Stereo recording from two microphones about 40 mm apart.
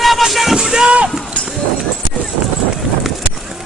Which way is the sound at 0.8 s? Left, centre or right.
Right.